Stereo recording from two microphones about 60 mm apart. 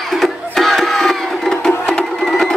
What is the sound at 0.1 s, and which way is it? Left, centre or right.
Music, centre.